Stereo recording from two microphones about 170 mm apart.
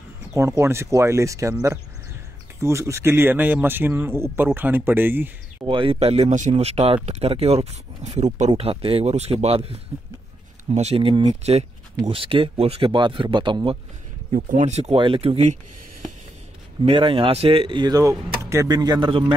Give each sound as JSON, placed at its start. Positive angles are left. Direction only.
{"t": 0.3, "sound": "speech", "side_deg": -15}
{"t": 5.7, "sound": "speech", "side_deg": -30}
{"t": 14.3, "sound": "speech", "side_deg": -50}
{"t": 16.8, "sound": "speech", "side_deg": -35}